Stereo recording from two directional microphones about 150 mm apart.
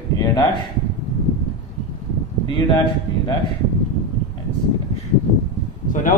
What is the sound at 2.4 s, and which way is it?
Speech, 35° left (ahead or behind).